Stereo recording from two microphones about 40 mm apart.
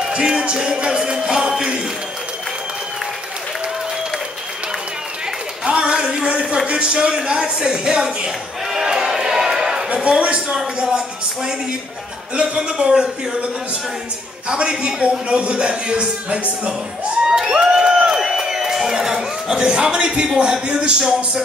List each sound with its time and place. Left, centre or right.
0.1 s a man's voice: centre
5.7 s a man's voice: right
8.8 s music: centre
10.0 s a man's voice: right
12.4 s a man's voice: right
14.5 s a man's voice: right
17.3 s crowd: centre
18.1 s a sound: centre
20.6 s a man's voice: right